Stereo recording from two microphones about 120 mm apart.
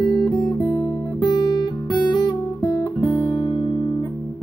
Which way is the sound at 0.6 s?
5° left (ahead or behind).